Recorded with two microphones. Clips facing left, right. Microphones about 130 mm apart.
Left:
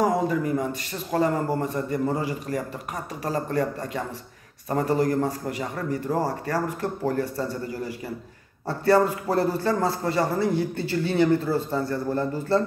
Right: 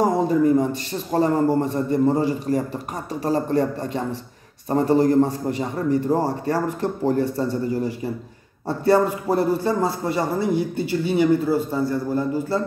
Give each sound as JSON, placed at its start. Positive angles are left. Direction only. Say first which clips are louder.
{"t": 0.0, "sound": "a man's voice", "louder": "right 5 dB", "side_deg": -30}